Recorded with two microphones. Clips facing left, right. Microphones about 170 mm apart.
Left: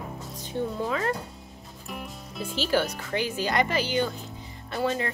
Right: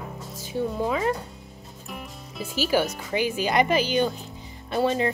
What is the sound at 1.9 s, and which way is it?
A woman's voice, centre (ahead or behind).